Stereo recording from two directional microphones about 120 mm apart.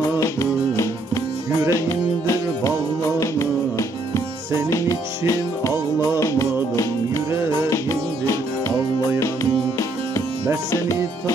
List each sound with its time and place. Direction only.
0.2 s music: 25° left (ahead or behind)